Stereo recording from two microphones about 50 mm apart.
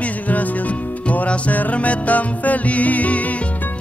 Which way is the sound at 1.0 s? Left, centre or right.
Left.